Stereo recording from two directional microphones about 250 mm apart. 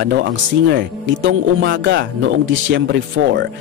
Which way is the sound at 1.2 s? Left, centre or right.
Right.